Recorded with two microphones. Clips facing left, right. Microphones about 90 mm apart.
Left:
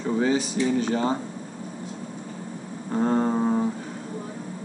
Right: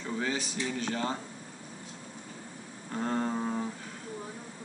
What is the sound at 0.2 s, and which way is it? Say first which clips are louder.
A man's voice: left 10 dB; 10° left (ahead or behind).